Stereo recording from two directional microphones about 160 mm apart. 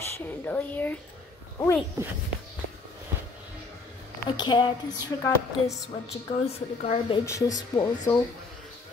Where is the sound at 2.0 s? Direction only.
20° right (ahead or behind).